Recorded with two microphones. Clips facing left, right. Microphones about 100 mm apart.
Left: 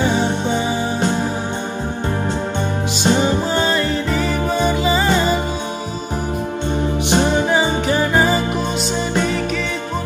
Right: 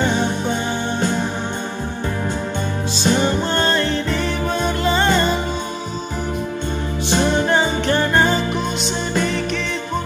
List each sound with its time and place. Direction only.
3.0 s music: 15° left (ahead or behind)
3.5 s music: 5° left (ahead or behind)
7.1 s music: 15° left (ahead or behind)
7.4 s music: 5° left (ahead or behind)